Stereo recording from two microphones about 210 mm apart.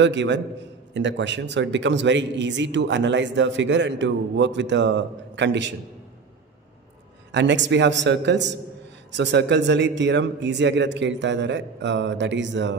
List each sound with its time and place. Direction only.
0.0 s a man's voice: 60° right (ahead or behind)
7.3 s a man's voice: 60° right (ahead or behind)